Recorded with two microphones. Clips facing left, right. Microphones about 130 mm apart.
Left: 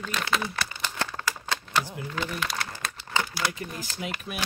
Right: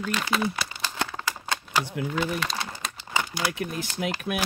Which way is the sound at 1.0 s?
15° right (ahead or behind).